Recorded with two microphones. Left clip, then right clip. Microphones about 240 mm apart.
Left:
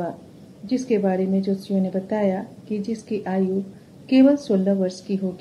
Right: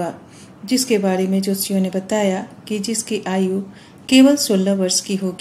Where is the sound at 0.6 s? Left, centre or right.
Right.